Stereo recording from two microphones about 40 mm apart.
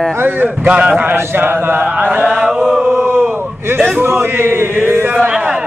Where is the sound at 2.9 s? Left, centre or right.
Right.